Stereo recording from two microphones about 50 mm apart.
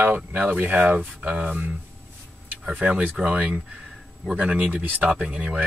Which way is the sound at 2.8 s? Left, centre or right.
Right.